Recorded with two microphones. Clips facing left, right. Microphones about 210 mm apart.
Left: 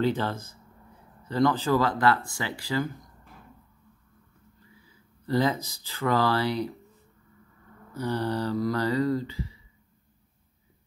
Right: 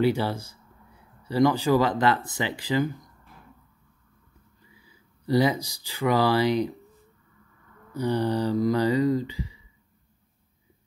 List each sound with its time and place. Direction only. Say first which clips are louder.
0.0 s mantra: right 3 dB; 10° right (ahead or behind)
1.2 s speech: right 3 dB; 10° right (ahead or behind)
5.2 s mantra: right 3 dB; 15° right (ahead or behind)
7.9 s mantra: right 4 dB; 15° right (ahead or behind)